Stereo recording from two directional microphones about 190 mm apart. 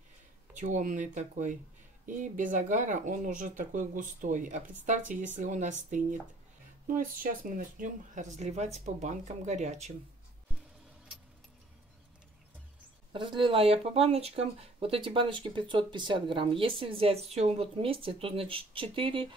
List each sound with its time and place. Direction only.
0.6 s speech: 40° right (ahead or behind)
13.1 s speech: 25° right (ahead or behind)